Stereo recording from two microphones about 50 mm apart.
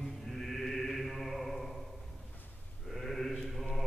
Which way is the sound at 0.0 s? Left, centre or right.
Centre.